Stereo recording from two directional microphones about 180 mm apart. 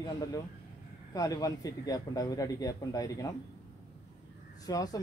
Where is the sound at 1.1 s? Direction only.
20° left (ahead or behind).